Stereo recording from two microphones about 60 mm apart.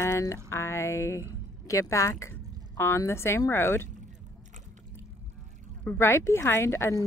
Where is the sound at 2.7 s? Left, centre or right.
Left.